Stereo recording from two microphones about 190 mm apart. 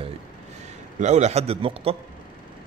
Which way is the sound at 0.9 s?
35° right (ahead or behind).